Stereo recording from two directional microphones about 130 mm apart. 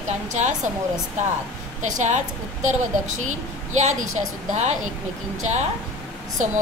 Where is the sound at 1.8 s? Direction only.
65° right (ahead or behind).